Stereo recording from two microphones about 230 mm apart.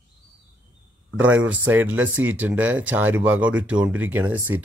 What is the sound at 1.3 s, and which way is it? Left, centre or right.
Speech, centre.